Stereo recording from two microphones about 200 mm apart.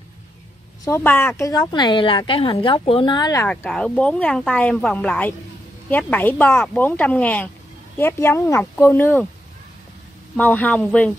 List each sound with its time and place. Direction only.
0.8 s speech: 10° left (ahead or behind)
3.4 s speech: 5° left (ahead or behind)
10.3 s speech: 10° left (ahead or behind)